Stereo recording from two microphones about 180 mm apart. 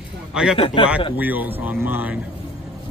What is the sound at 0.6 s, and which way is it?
Speech, 30° left (ahead or behind).